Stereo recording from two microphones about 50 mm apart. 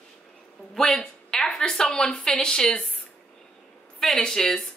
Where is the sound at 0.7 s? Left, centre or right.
Centre.